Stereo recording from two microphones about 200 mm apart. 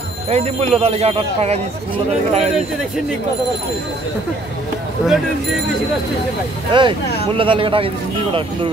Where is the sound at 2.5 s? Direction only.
Centre (ahead or behind).